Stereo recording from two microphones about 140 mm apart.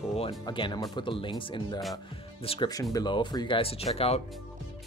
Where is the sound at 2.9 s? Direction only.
30° left (ahead or behind).